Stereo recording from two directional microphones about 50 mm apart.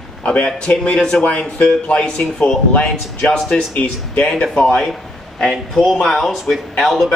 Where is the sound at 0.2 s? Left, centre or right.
Left.